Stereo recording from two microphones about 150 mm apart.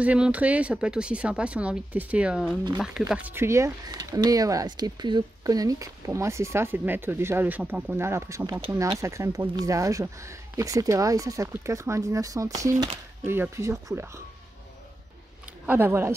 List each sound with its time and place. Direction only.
0.0 s speech: 10° right (ahead or behind)
15.6 s speech: 15° right (ahead or behind)